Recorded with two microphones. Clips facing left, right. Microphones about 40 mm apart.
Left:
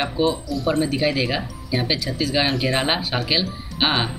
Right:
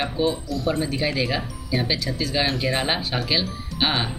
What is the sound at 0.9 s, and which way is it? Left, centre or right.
Speech, centre.